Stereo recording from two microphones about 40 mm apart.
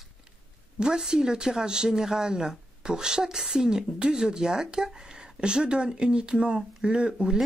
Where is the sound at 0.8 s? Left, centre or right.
Centre.